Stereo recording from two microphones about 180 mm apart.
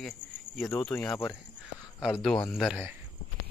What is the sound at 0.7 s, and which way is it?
Speech, 15° left (ahead or behind).